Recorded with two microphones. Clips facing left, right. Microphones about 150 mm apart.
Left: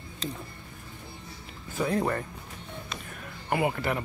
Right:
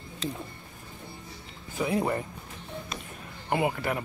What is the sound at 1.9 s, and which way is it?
Speech, 15° right (ahead or behind).